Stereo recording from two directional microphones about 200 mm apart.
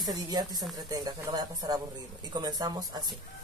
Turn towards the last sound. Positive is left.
turn(degrees=-20)  # may be behind; listen again after turning